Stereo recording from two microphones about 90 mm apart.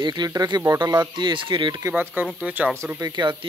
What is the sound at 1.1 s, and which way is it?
Speech, 65° right (ahead or behind).